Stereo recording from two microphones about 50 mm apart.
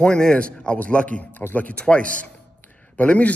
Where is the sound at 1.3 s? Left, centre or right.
Left.